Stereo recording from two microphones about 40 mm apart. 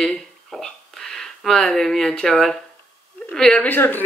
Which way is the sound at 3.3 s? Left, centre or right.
Centre.